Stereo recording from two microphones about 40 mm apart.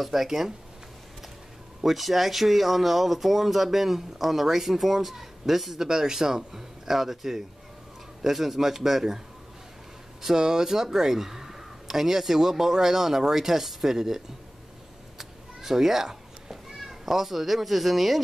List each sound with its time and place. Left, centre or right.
0.0 s speech: centre
1.8 s speech: centre
10.2 s speech: centre
15.1 s cat: centre